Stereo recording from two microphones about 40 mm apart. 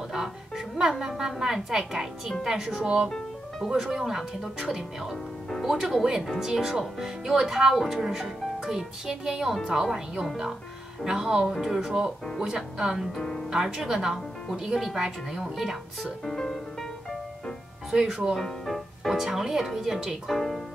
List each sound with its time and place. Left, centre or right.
0.1 s music: centre
0.9 s speech: centre
5.1 s music: centre
5.7 s speech: centre
11.5 s speech: centre
11.8 s speech: centre
13.1 s music: centre
13.5 s speech: centre
16.3 s music: centre
18.3 s speech: centre
19.0 s speech: centre
20.3 s music: centre